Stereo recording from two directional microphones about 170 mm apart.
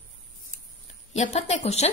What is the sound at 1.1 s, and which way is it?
Speech, 40° left (ahead or behind).